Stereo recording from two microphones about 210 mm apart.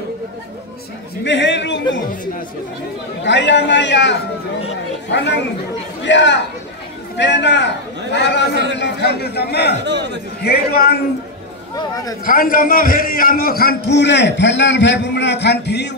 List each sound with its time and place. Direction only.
1.2 s a man's voice: 60° left (ahead or behind)
3.3 s a man's voice: 55° left (ahead or behind)
9.8 s a man's voice: 55° right (ahead or behind)
10.4 s a man's voice: 45° left (ahead or behind)
12.3 s a man's voice: 40° left (ahead or behind)